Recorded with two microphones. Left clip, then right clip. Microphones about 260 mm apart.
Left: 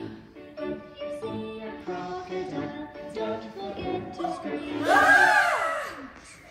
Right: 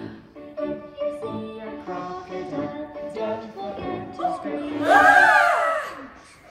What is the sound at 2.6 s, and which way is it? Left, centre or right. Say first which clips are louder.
Music: right 5 dB; right.